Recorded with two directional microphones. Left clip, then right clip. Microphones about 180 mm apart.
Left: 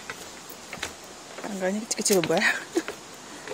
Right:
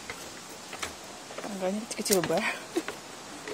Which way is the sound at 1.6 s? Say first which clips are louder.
Left 4 dB; 30° left (ahead or behind).